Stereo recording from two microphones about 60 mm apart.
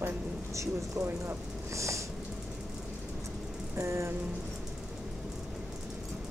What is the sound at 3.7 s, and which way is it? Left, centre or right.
Speech, right.